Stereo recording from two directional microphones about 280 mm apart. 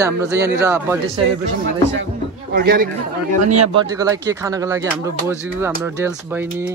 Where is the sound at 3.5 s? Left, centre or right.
Centre.